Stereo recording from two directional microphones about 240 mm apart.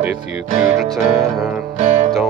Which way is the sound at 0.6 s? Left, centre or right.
Centre.